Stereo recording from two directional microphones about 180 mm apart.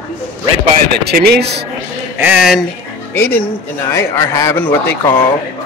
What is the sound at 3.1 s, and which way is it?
A man's voice, 15° left (ahead or behind).